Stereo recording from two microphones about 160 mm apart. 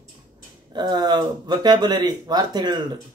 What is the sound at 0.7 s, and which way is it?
Speech, 25° right (ahead or behind).